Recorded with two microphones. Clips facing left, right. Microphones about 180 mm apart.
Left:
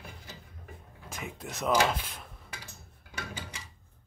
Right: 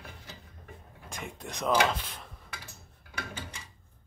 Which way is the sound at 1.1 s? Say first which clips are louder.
Even; 5° left (ahead or behind).